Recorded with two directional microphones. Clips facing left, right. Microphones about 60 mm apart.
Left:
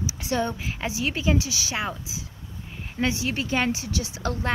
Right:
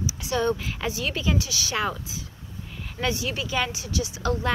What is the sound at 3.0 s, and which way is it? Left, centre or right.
Speech, left.